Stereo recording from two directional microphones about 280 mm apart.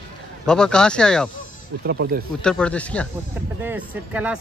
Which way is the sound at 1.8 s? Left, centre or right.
Right.